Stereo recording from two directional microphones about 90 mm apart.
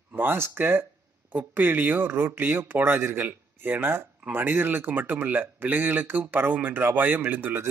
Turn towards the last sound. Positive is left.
turn(degrees=-25)  # may be behind; listen again after turning